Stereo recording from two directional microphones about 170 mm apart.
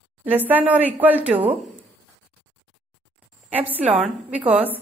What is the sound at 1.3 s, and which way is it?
Speech, 35° right (ahead or behind).